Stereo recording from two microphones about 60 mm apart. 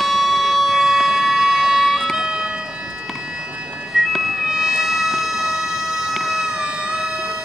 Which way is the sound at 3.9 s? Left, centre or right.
Centre.